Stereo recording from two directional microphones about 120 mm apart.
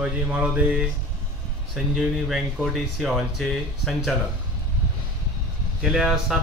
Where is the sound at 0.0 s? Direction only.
10° right (ahead or behind).